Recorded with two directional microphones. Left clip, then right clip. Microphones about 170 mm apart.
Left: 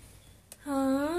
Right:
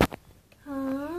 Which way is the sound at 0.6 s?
5° right (ahead or behind).